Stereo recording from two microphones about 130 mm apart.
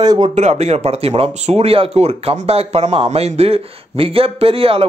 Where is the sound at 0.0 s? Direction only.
30° right (ahead or behind).